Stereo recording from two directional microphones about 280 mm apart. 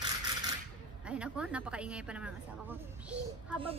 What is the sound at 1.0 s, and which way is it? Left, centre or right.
A woman's voice, centre.